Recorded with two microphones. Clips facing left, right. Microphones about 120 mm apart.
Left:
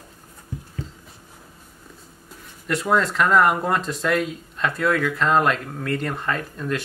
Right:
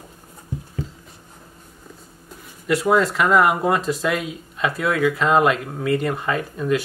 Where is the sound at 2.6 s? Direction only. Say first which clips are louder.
Right 3 dB; 5° right (ahead or behind).